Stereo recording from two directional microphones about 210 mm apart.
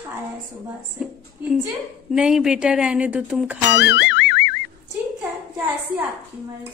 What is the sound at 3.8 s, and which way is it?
Music, 55° left (ahead or behind).